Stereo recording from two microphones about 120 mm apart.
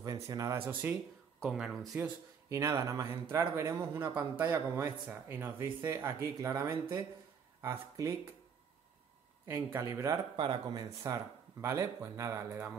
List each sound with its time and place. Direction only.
0.0 s speech: 30° right (ahead or behind)
1.4 s speech: centre (ahead or behind)
2.5 s speech: 25° right (ahead or behind)
9.5 s speech: 20° right (ahead or behind)
10.3 s speech: 45° right (ahead or behind); by 12.7 s 20° right (ahead or behind)